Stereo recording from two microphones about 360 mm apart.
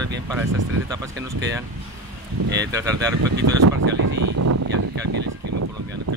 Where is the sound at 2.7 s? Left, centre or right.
Centre.